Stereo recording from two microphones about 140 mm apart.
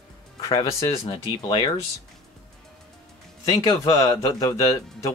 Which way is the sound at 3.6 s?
30° left (ahead or behind).